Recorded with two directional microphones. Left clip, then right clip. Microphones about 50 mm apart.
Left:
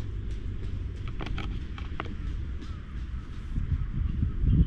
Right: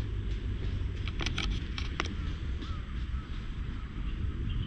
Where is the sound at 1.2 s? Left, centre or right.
Left.